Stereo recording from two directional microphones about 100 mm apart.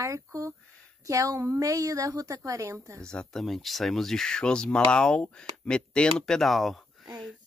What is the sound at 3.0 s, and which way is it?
Speech, 10° left (ahead or behind).